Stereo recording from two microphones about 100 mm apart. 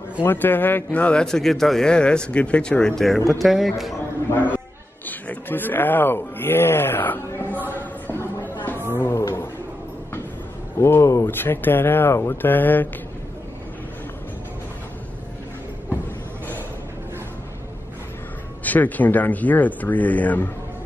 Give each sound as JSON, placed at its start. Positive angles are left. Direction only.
{"t": 0.2, "sound": "a man's voice", "side_deg": 20}
{"t": 4.3, "sound": "speech", "side_deg": 20}
{"t": 7.5, "sound": "a sound", "side_deg": -20}
{"t": 8.1, "sound": "chatter", "side_deg": 25}
{"t": 8.9, "sound": "speech", "side_deg": 20}
{"t": 9.2, "sound": "a sound", "side_deg": 25}
{"t": 10.8, "sound": "speech", "side_deg": 25}
{"t": 18.6, "sound": "a man's voice", "side_deg": 15}